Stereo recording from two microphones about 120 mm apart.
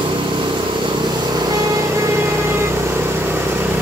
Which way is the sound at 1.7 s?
25° right (ahead or behind).